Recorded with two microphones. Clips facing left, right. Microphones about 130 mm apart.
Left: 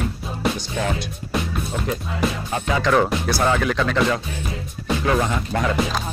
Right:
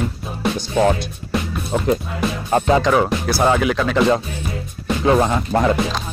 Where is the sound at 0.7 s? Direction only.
40° right (ahead or behind).